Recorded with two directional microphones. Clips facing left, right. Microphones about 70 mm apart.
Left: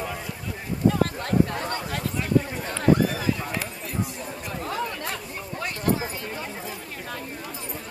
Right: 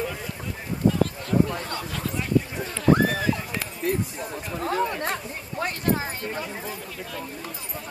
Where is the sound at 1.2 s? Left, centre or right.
Left.